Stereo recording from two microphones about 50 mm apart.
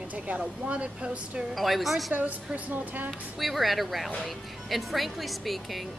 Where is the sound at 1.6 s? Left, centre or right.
Centre.